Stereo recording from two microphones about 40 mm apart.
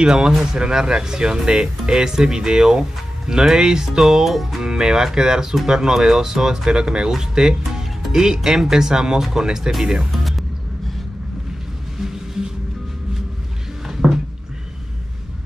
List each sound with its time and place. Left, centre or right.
0.0 s speech: centre
4.6 s speech: centre
12.0 s vehicle: centre
13.8 s a sound: centre